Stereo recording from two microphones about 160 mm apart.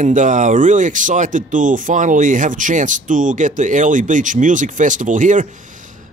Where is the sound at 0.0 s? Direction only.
50° right (ahead or behind).